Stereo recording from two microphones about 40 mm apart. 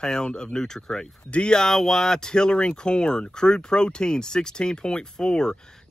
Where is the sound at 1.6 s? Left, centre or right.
Centre.